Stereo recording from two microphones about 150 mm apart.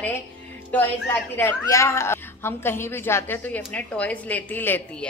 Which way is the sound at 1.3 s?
15° left (ahead or behind).